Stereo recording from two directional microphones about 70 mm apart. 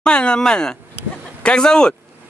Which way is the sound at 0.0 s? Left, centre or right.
Centre.